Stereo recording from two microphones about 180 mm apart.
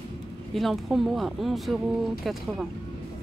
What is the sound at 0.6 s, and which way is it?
Speech, centre (ahead or behind).